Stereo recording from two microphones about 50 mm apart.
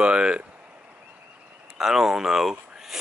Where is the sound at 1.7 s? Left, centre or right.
Centre.